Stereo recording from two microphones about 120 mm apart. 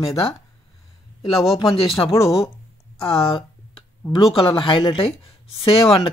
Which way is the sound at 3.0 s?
50° left (ahead or behind).